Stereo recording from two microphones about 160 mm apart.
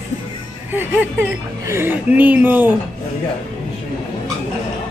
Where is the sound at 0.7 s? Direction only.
10° right (ahead or behind).